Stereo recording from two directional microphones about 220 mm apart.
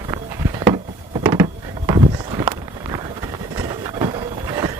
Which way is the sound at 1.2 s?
15° right (ahead or behind).